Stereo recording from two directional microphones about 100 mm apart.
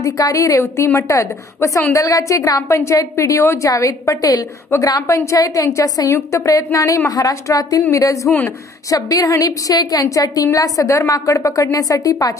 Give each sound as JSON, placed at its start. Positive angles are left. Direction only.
{"t": 0.0, "sound": "a woman's voice", "side_deg": 35}